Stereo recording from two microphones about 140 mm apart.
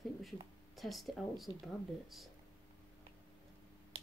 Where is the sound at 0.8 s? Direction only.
Centre (ahead or behind).